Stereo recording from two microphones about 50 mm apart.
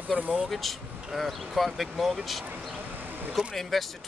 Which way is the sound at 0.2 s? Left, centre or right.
Right.